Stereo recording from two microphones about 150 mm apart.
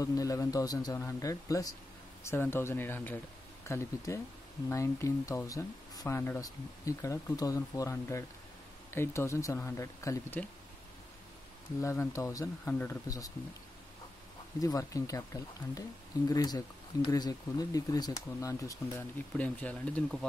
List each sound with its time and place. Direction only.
0.0 s speech: 25° left (ahead or behind)
11.8 s speech: 20° left (ahead or behind)
14.6 s speech: 20° left (ahead or behind)
18.9 s speech: 10° left (ahead or behind)